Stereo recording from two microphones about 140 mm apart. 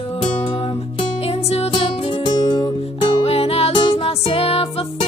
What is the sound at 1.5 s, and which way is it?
Music, 45° left (ahead or behind).